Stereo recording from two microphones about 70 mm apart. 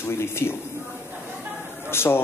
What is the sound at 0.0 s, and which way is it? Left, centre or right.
Speech, left.